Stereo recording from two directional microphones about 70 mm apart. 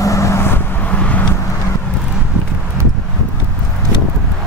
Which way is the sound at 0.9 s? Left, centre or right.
Centre.